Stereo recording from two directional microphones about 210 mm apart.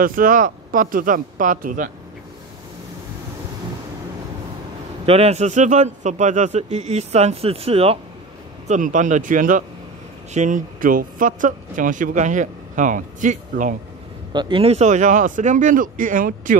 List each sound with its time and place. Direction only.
0.0 s speech: 40° right (ahead or behind)
5.0 s speech: 30° right (ahead or behind)
14.3 s speech: 20° right (ahead or behind); by 16.5 s 40° right (ahead or behind)